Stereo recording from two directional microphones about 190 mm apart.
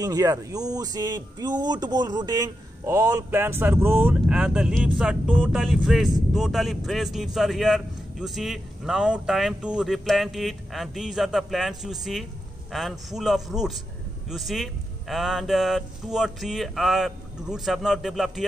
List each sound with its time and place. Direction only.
0.0 s speech: 20° right (ahead or behind); by 18.4 s centre (ahead or behind)